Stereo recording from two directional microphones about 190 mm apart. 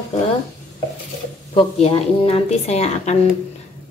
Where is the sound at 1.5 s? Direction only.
30° left (ahead or behind).